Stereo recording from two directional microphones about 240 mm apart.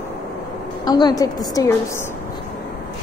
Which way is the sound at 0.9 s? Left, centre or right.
Centre.